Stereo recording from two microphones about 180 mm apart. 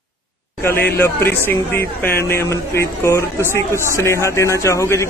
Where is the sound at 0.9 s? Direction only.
10° left (ahead or behind).